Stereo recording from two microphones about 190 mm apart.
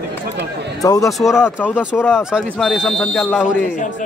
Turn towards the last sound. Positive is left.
turn(degrees=0)  # may be behind; listen again after turning